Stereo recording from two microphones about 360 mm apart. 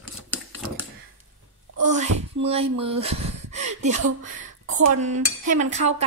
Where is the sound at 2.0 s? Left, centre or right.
Centre.